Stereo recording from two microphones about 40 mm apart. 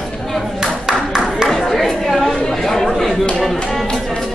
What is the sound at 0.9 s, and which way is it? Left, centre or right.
Clapping, centre.